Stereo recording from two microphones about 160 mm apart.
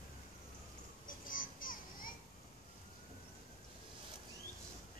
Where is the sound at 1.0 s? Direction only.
60° left (ahead or behind).